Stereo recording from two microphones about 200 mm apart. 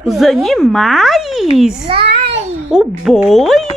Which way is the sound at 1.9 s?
25° right (ahead or behind).